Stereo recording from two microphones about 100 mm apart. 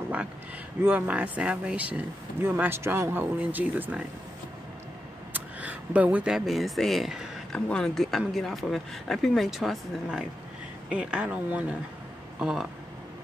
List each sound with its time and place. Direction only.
0.8 s speech: 15° right (ahead or behind)
5.3 s a sound: 15° right (ahead or behind)
6.3 s speech: centre (ahead or behind)
7.5 s speech: 10° left (ahead or behind); by 12.6 s 5° right (ahead or behind)